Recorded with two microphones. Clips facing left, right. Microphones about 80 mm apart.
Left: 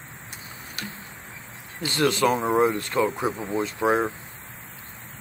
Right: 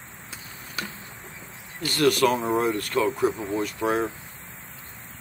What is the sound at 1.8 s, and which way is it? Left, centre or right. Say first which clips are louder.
Speech: right 1 dB; left.